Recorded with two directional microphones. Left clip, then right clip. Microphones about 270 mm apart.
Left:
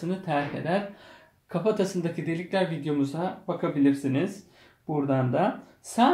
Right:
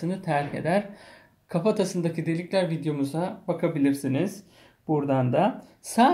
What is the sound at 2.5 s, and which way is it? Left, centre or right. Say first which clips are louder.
Speech: even; right.